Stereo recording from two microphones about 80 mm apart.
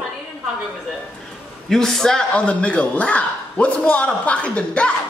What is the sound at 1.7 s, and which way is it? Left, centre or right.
A man's voice, centre.